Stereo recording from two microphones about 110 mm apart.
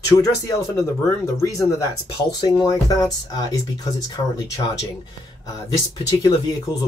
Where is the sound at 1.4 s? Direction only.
30° left (ahead or behind).